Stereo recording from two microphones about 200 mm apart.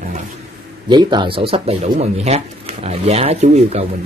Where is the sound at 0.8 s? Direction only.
20° right (ahead or behind).